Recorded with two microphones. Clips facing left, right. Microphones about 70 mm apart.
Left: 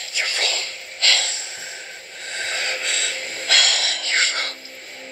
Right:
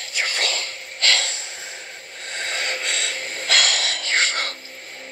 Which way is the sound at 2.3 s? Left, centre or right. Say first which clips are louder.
Even; centre.